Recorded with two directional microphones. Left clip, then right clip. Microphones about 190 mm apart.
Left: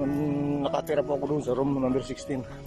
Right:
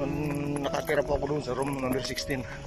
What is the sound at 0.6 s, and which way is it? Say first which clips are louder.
Speech: right 1 dB; 15° left (ahead or behind).